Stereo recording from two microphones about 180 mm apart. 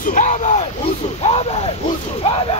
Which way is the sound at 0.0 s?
45° left (ahead or behind).